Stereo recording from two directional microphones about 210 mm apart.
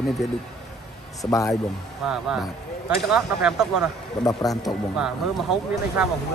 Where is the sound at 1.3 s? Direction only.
15° left (ahead or behind).